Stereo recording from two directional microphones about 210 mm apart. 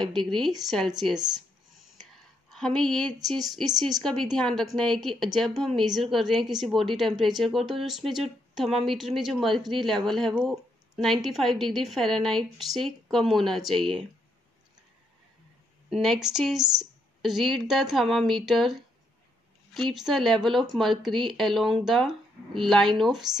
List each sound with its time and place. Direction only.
0.0 s speech: centre (ahead or behind)
2.5 s speech: centre (ahead or behind)
15.9 s speech: centre (ahead or behind)